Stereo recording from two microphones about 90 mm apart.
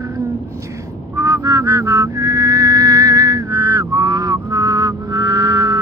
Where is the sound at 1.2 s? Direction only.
40° right (ahead or behind).